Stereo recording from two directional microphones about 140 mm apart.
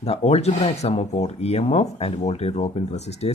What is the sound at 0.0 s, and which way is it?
Speech, 50° left (ahead or behind).